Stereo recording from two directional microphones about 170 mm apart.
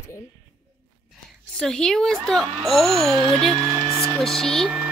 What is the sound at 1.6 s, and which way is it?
Speech, 5° left (ahead or behind).